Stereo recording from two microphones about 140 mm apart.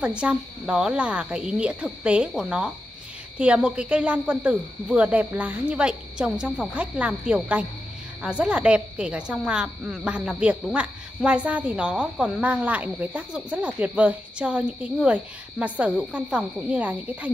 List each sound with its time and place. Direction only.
0.0 s a woman's voice: 10° right (ahead or behind)